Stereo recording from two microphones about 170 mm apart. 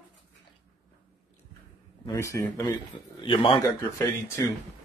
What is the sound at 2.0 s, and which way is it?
Speech, 20° left (ahead or behind).